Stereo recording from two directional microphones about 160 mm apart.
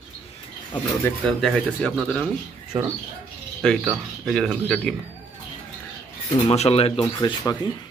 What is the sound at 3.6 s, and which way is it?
Speech, centre (ahead or behind).